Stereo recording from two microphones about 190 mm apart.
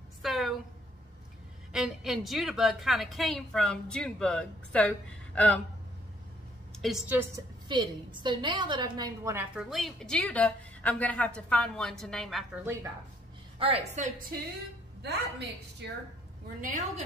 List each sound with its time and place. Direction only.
0.2 s a sound: centre (ahead or behind)
1.7 s a woman's voice: centre (ahead or behind)
6.8 s a woman's voice: centre (ahead or behind)
7.2 s a woman's voice: 20° right (ahead or behind)
9.6 s a woman's voice: centre (ahead or behind)
13.6 s a woman's voice: 30° right (ahead or behind)
15.0 s a woman's voice: 60° right (ahead or behind)
16.6 s a woman's voice: 40° right (ahead or behind)